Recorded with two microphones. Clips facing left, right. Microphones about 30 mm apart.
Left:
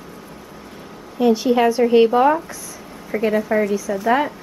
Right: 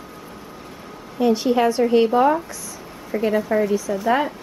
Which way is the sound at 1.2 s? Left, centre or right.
Centre.